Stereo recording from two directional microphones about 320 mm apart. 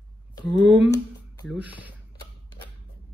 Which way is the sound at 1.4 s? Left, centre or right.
Centre.